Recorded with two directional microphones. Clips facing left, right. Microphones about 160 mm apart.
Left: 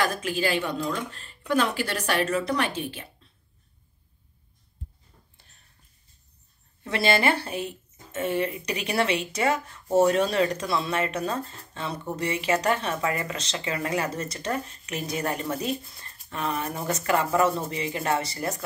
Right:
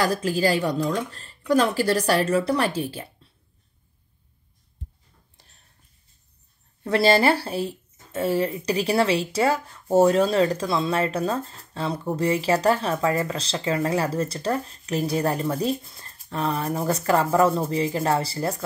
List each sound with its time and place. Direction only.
0.0 s speech: 35° right (ahead or behind)
6.8 s speech: 35° right (ahead or behind)